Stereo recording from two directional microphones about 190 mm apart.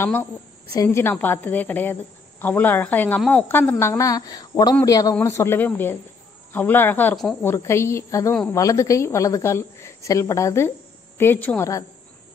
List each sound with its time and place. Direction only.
0.0 s a woman's voice: 10° left (ahead or behind)